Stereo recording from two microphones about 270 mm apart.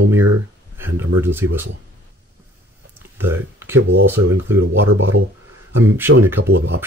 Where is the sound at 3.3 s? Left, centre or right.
Centre.